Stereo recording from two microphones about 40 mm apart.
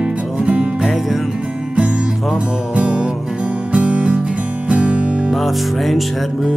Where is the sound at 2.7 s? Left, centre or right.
Right.